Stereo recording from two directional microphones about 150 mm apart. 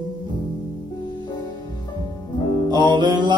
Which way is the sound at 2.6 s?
30° right (ahead or behind).